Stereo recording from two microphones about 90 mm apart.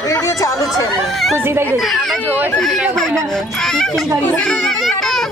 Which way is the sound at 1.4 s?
25° right (ahead or behind).